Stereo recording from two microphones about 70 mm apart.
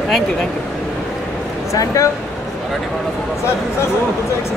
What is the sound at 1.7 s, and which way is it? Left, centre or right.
Speech, left.